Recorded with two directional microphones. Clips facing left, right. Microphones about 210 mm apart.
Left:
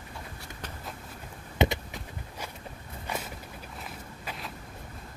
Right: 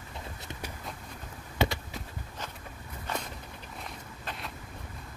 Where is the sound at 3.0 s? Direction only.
10° left (ahead or behind).